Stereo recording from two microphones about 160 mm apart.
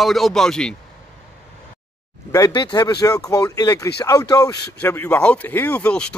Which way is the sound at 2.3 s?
25° left (ahead or behind).